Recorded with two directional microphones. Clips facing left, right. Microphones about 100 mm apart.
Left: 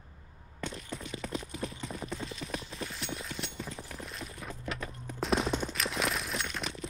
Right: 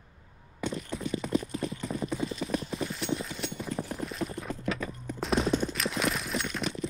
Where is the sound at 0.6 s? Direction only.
5° right (ahead or behind).